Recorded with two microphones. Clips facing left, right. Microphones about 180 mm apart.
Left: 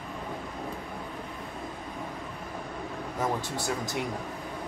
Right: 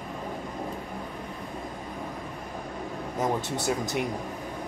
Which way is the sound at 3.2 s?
20° right (ahead or behind).